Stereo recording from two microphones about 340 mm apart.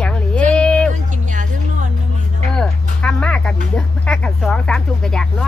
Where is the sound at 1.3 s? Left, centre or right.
Right.